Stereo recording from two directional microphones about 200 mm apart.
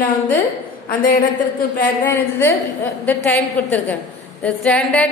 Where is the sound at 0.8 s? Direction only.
45° left (ahead or behind).